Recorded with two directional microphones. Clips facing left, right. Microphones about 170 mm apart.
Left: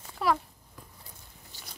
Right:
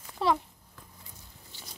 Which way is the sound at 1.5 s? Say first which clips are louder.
Right 1 dB; 40° left (ahead or behind).